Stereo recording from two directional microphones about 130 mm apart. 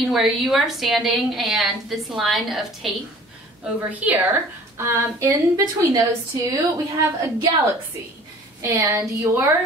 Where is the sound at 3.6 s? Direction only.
15° right (ahead or behind).